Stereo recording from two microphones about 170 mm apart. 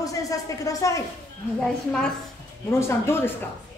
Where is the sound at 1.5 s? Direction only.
5° left (ahead or behind).